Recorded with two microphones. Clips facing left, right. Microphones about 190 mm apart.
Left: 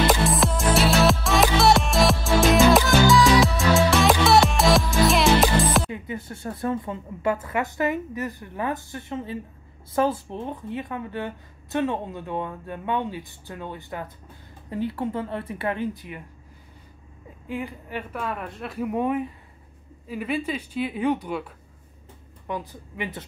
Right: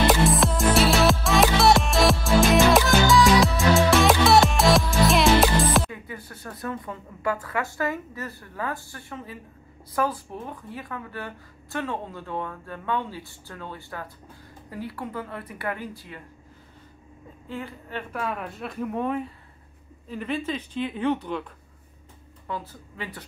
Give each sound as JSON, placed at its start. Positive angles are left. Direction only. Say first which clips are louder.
{"t": 0.0, "sound": "music", "louder": "right 1 dB", "side_deg": 0}
{"t": 5.9, "sound": "a woman's voice", "louder": "left 6 dB", "side_deg": 25}
{"t": 17.5, "sound": "speech", "louder": "left 3 dB", "side_deg": 15}
{"t": 18.1, "sound": "speech", "louder": "right 2 dB", "side_deg": 0}
{"t": 22.5, "sound": "speech", "louder": "left 2 dB", "side_deg": 15}